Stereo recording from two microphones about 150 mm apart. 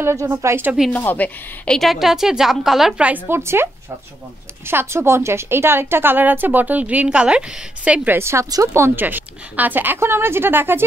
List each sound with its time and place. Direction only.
0.0 s a woman's voice: 20° right (ahead or behind)
0.9 s a woman's voice: 15° left (ahead or behind); by 3.6 s 15° right (ahead or behind)
4.6 s a woman's voice: 15° right (ahead or behind)